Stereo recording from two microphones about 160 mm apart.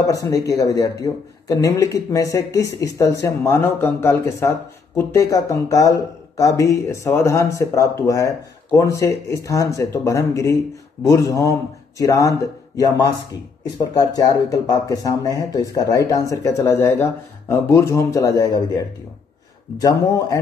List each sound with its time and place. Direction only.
0.0 s speech: 20° left (ahead or behind)
13.9 s speech: 25° left (ahead or behind)
19.8 s speech: 20° left (ahead or behind)